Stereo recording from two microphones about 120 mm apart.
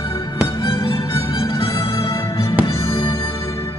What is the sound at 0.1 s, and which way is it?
Music, 25° left (ahead or behind).